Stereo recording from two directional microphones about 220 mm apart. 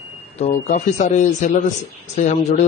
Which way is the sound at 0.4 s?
30° left (ahead or behind).